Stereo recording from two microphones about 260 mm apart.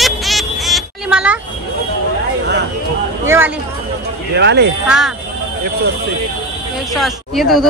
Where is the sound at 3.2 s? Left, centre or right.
Centre.